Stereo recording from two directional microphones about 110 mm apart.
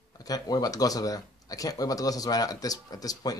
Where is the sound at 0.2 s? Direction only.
35° left (ahead or behind).